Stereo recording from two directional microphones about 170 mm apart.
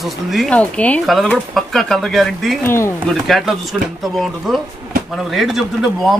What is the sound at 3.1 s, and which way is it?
Speech, centre (ahead or behind).